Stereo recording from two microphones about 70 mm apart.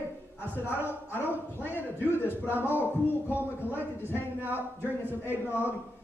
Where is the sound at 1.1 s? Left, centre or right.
Left.